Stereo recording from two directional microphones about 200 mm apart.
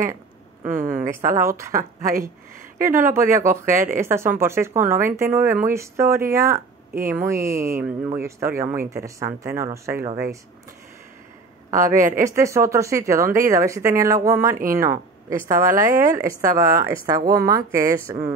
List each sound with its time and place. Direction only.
0.7 s speech: 45° right (ahead or behind)
1.0 s speech: 15° right (ahead or behind)
3.1 s speech: 15° right (ahead or behind)
11.7 s speech: 15° right (ahead or behind)